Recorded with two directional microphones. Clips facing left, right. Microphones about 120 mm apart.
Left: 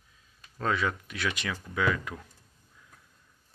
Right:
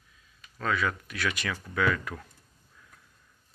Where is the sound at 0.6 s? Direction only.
25° left (ahead or behind).